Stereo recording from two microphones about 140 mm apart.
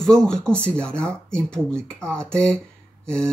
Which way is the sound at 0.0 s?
5° left (ahead or behind).